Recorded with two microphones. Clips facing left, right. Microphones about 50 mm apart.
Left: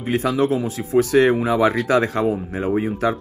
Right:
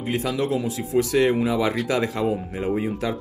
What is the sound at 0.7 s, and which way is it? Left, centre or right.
Speech, left.